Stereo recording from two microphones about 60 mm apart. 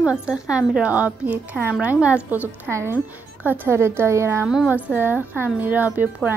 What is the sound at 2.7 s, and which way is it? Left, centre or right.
Speech, right.